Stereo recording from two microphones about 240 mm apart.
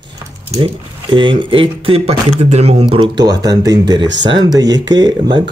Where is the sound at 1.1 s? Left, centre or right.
Centre.